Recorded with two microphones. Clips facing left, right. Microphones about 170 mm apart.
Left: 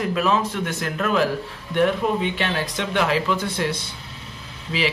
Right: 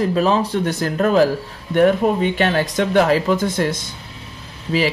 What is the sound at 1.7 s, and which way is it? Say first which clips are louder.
Speech: right 5 dB; 45° right (ahead or behind).